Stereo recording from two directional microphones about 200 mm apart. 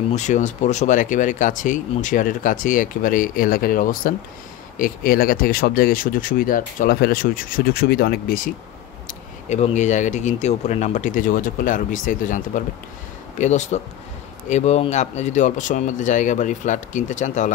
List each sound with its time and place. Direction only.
0.1 s speech: 35° left (ahead or behind)
9.0 s speech: 35° left (ahead or behind)